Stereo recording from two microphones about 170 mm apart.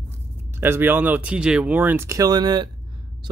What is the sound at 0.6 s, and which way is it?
Speech, 10° right (ahead or behind).